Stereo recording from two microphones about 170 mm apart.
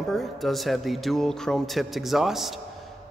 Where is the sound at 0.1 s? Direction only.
Centre (ahead or behind).